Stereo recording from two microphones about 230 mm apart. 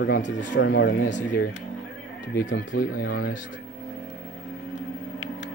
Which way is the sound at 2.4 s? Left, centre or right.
Left.